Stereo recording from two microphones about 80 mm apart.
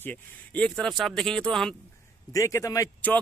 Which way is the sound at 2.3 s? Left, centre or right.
Left.